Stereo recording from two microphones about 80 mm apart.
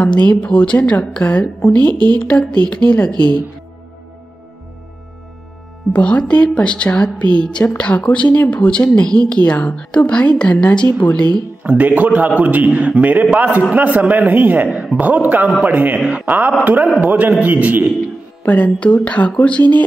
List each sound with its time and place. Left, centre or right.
0.0 s a woman's voice: centre
5.9 s a woman's voice: centre
11.6 s a man's voice: centre
18.4 s speech: centre